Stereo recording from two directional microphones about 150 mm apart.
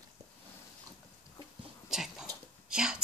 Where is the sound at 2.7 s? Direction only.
5° right (ahead or behind).